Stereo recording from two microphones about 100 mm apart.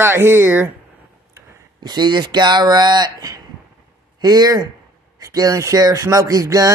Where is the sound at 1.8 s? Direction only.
45° right (ahead or behind).